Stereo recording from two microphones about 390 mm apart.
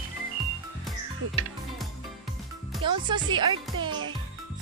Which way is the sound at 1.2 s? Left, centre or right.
Right.